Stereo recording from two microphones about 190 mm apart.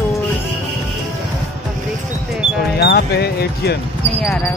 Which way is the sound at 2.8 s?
55° left (ahead or behind).